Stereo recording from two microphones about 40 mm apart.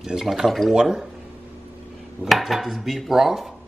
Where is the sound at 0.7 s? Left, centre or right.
Centre.